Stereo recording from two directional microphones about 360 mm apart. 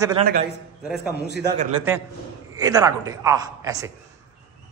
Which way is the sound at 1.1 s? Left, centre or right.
Left.